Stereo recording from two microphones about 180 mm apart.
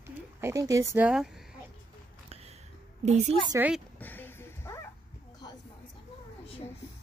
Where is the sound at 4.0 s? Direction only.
10° left (ahead or behind).